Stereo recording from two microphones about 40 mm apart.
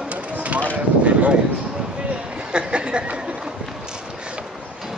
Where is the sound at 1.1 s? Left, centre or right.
Right.